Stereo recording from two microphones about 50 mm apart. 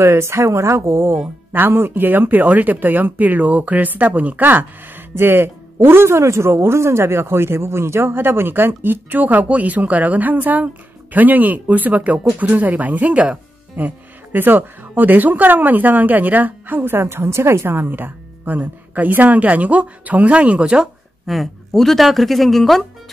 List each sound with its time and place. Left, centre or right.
0.0 s speech: right
1.5 s speech: right
5.1 s speech: right
17.0 s speech: right; by 20.9 s centre
21.3 s speech: centre